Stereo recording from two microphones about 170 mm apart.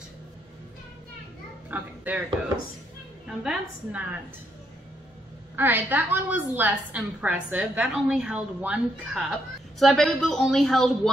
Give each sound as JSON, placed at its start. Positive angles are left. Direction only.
{"t": 1.7, "sound": "speech", "side_deg": -10}
{"t": 3.3, "sound": "a woman's voice", "side_deg": -5}
{"t": 5.6, "sound": "a woman's voice", "side_deg": -10}